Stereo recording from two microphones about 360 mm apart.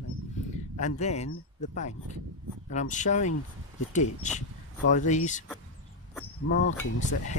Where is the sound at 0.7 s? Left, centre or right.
Centre.